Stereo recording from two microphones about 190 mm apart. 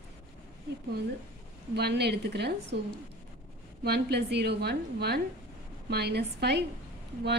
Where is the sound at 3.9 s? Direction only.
60° right (ahead or behind).